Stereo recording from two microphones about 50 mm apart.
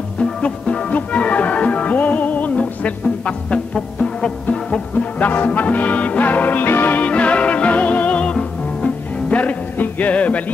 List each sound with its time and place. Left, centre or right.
0.2 s music: left
7.0 s music: left